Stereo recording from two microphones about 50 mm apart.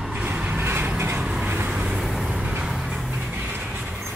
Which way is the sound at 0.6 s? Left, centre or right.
Right.